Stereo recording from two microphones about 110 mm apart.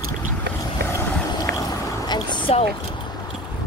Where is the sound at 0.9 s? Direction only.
35° left (ahead or behind).